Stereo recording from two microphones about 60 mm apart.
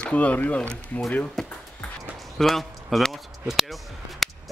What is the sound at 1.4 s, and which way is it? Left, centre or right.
Music, centre.